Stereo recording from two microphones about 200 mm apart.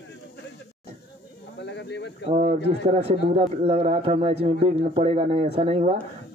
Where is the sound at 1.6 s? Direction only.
60° left (ahead or behind).